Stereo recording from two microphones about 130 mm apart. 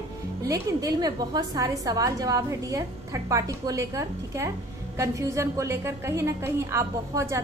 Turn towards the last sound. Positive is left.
turn(degrees=-25)  # may be behind; listen again after turning